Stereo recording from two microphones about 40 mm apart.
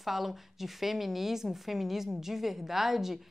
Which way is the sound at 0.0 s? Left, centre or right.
Centre.